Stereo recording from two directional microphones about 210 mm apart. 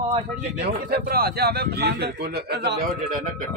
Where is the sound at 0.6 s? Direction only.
45° right (ahead or behind).